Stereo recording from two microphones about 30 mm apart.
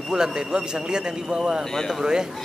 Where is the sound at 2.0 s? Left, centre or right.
Right.